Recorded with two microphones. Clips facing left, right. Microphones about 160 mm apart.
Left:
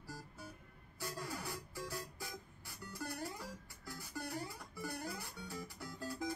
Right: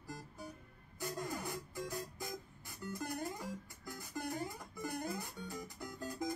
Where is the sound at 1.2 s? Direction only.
20° right (ahead or behind).